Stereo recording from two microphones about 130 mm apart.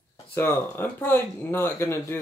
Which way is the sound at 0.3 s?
15° left (ahead or behind).